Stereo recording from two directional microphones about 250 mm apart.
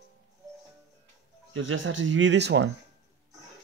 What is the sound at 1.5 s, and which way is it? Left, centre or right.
Speech, right.